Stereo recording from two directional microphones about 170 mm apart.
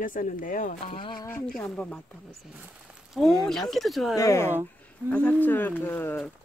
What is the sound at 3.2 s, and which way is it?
Speech, centre (ahead or behind).